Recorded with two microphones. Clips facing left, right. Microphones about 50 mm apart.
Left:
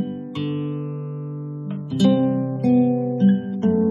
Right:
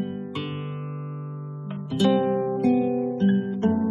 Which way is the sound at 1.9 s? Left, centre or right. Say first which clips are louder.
Left 3 dB; centre.